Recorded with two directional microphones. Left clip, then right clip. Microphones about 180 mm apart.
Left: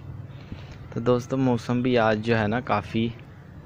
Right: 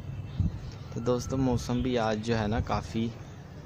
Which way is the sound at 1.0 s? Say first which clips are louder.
Left 6 dB; 20° left (ahead or behind).